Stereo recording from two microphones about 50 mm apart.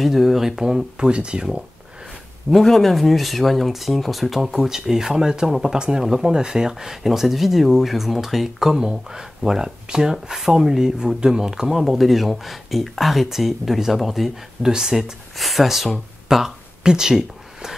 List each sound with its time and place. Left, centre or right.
0.0 s speech: centre
0.9 s speech: centre
2.5 s speech: centre
11.7 s speech: centre